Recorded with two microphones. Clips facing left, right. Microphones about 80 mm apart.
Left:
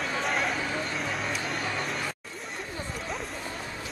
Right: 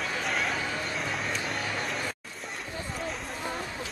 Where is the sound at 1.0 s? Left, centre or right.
Centre.